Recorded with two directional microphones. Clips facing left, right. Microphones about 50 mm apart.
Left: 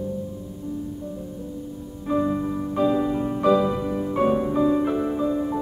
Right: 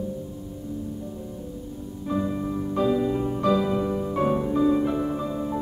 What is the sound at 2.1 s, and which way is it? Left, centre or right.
Music, centre.